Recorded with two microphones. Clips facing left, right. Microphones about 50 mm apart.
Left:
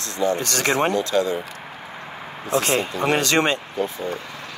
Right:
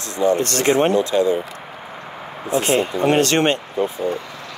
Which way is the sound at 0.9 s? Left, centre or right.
Right.